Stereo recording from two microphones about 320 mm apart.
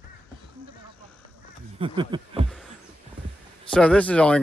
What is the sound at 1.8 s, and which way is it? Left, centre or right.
Speech, centre.